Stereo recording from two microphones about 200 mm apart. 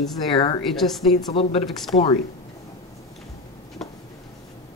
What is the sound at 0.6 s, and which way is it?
Speech, centre (ahead or behind).